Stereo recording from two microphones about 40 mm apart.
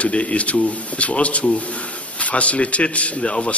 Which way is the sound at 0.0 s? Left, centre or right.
Left.